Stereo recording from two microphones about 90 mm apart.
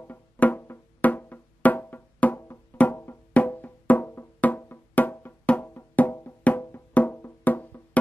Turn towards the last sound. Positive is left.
turn(degrees=20)  # may be behind; listen again after turning